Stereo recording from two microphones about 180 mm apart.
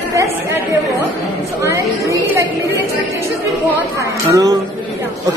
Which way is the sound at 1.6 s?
15° right (ahead or behind).